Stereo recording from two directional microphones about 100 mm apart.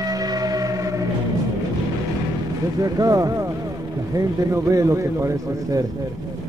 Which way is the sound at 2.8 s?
35° right (ahead or behind).